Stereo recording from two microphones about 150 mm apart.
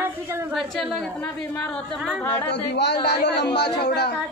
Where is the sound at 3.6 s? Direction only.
90° left.